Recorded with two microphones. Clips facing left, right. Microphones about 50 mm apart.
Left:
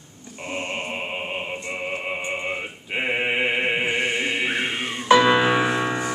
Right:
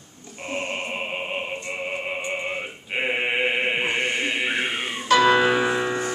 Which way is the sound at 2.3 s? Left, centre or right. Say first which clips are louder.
Left 1 dB; centre.